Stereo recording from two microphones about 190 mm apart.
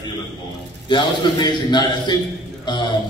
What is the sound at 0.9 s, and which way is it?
A man's voice, 25° left (ahead or behind).